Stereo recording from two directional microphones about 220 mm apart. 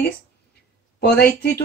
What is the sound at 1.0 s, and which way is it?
Speech, 45° left (ahead or behind).